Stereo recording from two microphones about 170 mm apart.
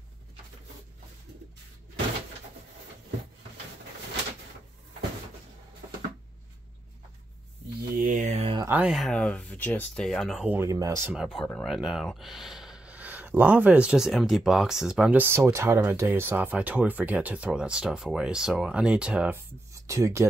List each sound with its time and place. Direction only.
8.0 s a sound: 50° right (ahead or behind)
8.6 s speech: 10° right (ahead or behind)
8.9 s speech: 5° left (ahead or behind); by 11.1 s 15° right (ahead or behind)
11.1 s speech: centre (ahead or behind)
19.7 s speech: 20° right (ahead or behind)